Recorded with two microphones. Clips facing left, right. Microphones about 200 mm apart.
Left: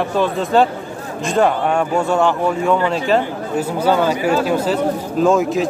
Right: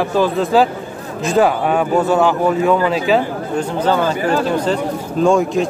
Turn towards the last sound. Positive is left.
turn(degrees=0)  # may be behind; listen again after turning